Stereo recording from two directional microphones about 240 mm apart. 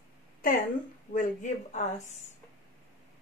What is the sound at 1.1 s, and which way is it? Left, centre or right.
A woman's voice, left.